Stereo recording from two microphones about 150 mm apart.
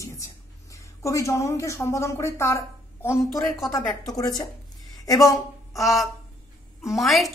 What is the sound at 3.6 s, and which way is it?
A woman's voice, 25° left (ahead or behind).